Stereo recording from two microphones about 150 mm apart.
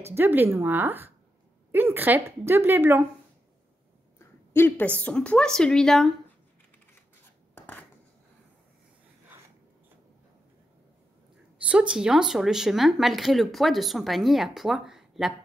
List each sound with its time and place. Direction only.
0.0 s a woman's voice: 15° right (ahead or behind)
4.6 s a woman's voice: 10° left (ahead or behind)
7.5 s a sound: 10° left (ahead or behind)
11.7 s speech: 5° right (ahead or behind)